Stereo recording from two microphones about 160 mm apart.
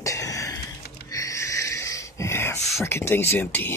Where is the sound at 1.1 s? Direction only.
20° left (ahead or behind).